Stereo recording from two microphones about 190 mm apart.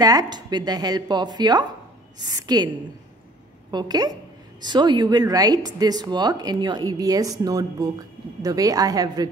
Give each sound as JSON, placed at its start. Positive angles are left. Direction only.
{"t": 0.0, "sound": "speech", "side_deg": -20}
{"t": 3.7, "sound": "speech", "side_deg": -20}